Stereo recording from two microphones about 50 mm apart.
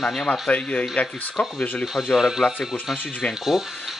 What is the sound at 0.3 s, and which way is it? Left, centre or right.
Speech, left.